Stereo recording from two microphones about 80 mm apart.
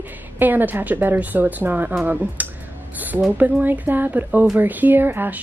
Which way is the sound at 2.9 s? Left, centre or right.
Right.